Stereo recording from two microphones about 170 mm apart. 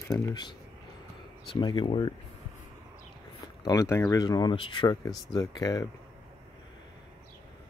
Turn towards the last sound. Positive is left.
turn(degrees=25)  # may be behind; listen again after turning